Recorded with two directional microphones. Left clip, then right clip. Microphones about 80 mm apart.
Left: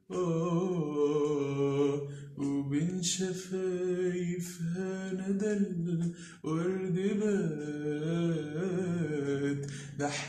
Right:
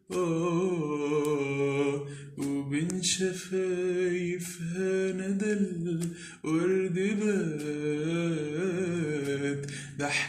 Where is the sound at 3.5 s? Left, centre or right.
Left.